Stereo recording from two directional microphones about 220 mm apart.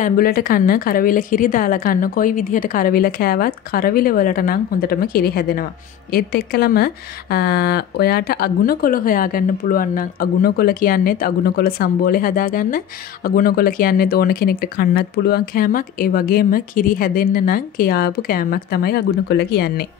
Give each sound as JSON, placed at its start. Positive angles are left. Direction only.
{"t": 0.0, "sound": "a woman's voice", "side_deg": 40}